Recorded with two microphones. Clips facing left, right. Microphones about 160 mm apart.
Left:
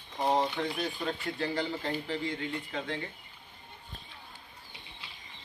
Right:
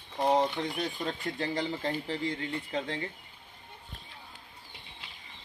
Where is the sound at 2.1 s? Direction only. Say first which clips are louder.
Right 1 dB; 35° right (ahead or behind).